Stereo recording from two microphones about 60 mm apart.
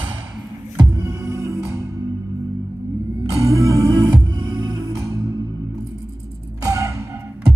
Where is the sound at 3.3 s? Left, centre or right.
Right.